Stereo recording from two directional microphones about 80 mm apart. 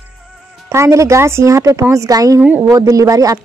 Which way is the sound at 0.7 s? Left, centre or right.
Right.